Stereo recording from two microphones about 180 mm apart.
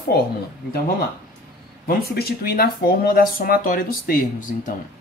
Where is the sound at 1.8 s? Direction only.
60° left (ahead or behind).